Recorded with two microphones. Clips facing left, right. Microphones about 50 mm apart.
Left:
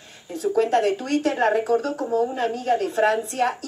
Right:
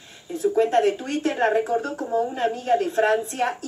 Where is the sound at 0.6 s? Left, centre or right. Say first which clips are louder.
Even; right.